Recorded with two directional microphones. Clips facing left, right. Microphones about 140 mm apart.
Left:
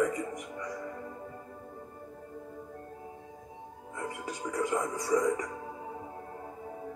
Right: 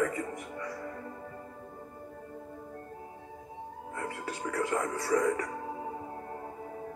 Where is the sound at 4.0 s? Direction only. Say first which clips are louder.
Even; 15° left (ahead or behind).